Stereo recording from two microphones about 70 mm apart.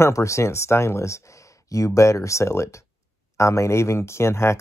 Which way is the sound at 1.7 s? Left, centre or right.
Left.